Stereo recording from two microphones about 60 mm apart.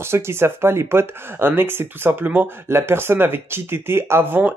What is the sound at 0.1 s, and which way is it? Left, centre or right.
Speech, right.